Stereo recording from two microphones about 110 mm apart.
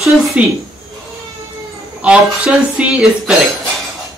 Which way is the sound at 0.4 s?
15° right (ahead or behind).